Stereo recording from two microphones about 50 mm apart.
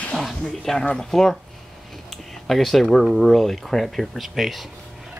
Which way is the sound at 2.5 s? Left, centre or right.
Centre.